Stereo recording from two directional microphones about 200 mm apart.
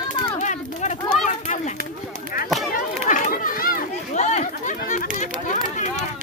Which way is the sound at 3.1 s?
45° left (ahead or behind).